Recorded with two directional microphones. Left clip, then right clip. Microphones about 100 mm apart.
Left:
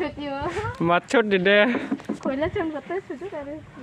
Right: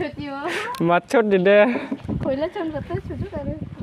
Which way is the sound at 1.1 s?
30° right (ahead or behind).